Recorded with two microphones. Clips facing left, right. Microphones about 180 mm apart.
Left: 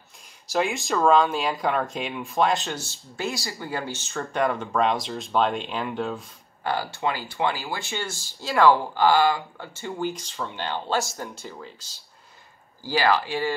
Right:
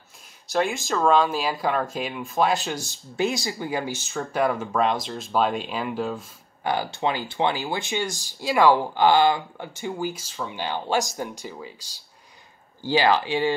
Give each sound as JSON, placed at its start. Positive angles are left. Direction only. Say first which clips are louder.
{"t": 0.5, "sound": "speech", "louder": "right 1 dB", "side_deg": 0}
{"t": 2.8, "sound": "speech", "louder": "right 6 dB", "side_deg": -15}
{"t": 4.1, "sound": "speech", "louder": "right 1 dB", "side_deg": -5}
{"t": 6.6, "sound": "speech", "louder": "right 2 dB", "side_deg": -15}